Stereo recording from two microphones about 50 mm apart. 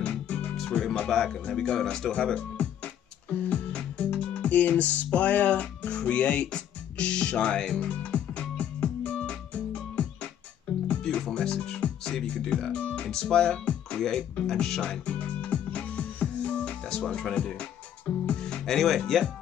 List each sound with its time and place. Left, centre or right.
0.9 s speech: centre
1.8 s music: centre
11.3 s speech: centre
12.7 s music: left
13.1 s speech: centre
14.8 s music: left
17.0 s speech: centre
17.6 s music: left; by 19.2 s centre